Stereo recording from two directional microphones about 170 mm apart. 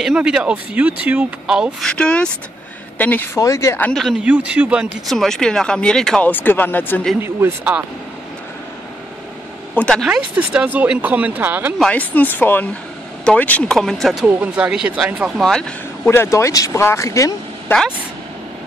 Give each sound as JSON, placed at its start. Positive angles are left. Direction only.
{"t": 0.0, "sound": "speech", "side_deg": -5}
{"t": 3.9, "sound": "speech", "side_deg": -5}
{"t": 7.2, "sound": "speech", "side_deg": -15}
{"t": 9.8, "sound": "speech", "side_deg": 5}
{"t": 11.8, "sound": "speech", "side_deg": 10}
{"t": 16.1, "sound": "speech", "side_deg": 15}